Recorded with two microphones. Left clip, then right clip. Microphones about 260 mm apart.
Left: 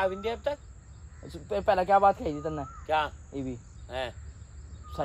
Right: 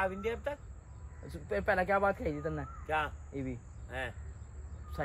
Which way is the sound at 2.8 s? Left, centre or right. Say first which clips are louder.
Left 6 dB; left.